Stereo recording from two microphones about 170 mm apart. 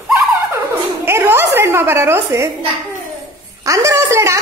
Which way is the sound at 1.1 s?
15° right (ahead or behind).